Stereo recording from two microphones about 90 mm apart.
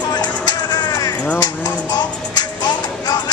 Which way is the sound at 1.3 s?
50° left (ahead or behind).